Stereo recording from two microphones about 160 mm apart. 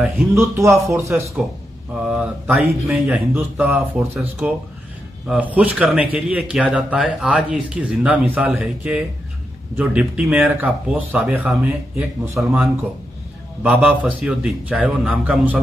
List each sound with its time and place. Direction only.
0.3 s a man's voice: 20° right (ahead or behind)